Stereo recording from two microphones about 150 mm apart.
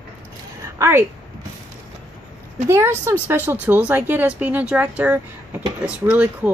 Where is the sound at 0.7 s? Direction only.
15° right (ahead or behind).